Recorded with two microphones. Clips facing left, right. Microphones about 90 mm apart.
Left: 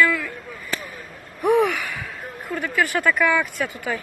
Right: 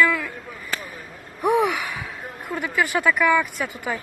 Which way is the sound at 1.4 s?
15° right (ahead or behind).